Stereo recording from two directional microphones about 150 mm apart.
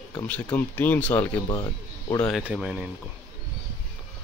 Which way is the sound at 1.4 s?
25° left (ahead or behind).